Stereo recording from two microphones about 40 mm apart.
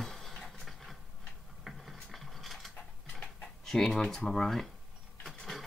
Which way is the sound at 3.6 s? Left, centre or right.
Centre.